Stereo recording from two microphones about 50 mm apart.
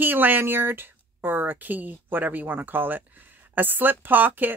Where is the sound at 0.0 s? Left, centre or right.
Right.